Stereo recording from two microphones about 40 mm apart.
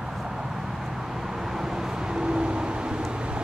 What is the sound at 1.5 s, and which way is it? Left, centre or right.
Vehicle, centre.